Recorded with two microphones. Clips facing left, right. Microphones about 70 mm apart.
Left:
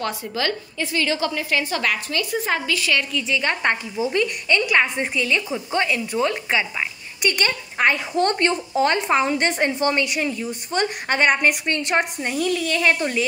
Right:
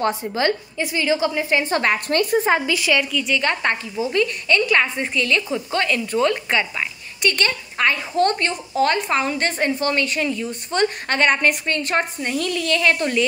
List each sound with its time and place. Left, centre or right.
0.0 s a woman's voice: right
2.5 s a woman's voice: centre
3.3 s speech: left
5.1 s a woman's voice: centre
7.2 s a woman's voice: centre